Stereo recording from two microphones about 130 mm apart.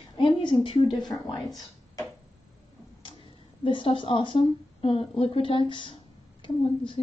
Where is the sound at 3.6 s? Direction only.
45° left (ahead or behind).